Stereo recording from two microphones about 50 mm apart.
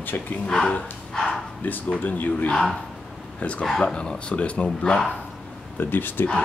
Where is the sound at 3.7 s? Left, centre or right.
Centre.